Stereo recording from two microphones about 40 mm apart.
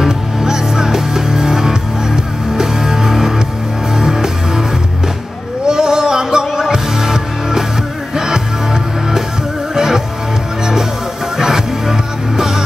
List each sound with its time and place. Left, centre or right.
0.0 s music: centre
5.7 s music: centre
9.8 s music: centre
11.3 s music: centre